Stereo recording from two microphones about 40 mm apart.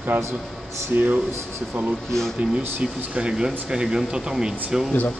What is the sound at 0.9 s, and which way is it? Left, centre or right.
Speech, right.